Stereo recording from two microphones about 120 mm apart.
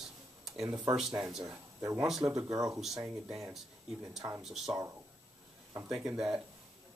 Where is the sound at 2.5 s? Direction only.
30° right (ahead or behind).